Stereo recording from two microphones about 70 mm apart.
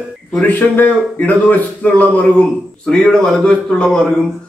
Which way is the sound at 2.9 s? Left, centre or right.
Centre.